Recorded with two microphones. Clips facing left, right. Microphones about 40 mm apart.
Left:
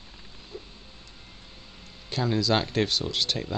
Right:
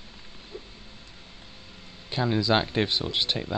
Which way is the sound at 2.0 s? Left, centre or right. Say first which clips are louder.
Right 1 dB; centre.